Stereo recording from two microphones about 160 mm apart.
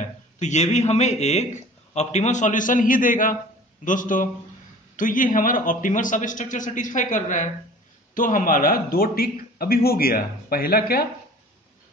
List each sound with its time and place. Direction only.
0.0 s a man's voice: 45° left (ahead or behind); by 11.1 s 70° left (ahead or behind)